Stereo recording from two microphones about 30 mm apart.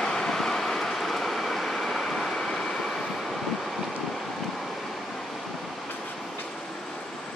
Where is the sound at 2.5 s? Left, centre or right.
Centre.